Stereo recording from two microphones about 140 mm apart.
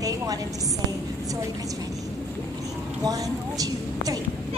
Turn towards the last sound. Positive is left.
turn(degrees=-25)  # may be behind; listen again after turning